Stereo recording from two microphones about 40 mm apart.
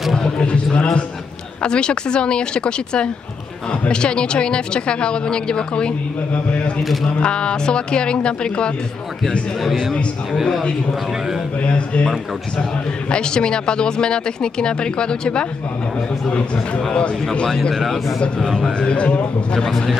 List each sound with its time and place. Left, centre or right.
0.4 s a sound: left
1.6 s speech: left
6.8 s a man's voice: centre
7.1 s speech: left
9.6 s a man's voice: centre
11.6 s speech: left
13.1 s speech: left
17.2 s speech: left
17.5 s a man's voice: centre
18.2 s speech: centre